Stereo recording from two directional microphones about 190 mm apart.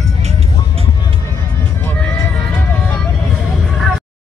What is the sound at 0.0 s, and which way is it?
Music, 35° right (ahead or behind).